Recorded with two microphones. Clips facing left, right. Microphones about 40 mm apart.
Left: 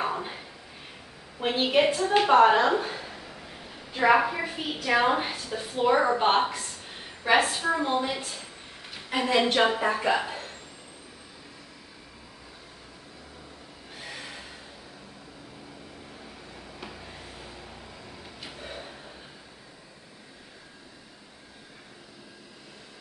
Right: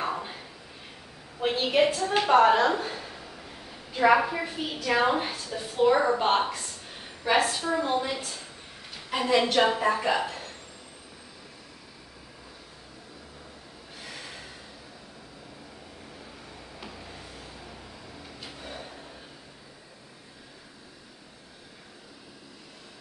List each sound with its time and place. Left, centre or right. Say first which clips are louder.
0.0 s a sound: left 1 dB; centre
1.4 s a woman's voice: even; centre
4.0 s a woman's voice: even; centre
9.3 s a woman's voice: right 1 dB; centre